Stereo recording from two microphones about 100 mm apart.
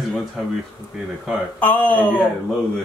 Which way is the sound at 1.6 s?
15° left (ahead or behind).